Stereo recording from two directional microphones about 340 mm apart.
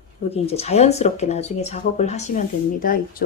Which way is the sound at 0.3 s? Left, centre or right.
Centre.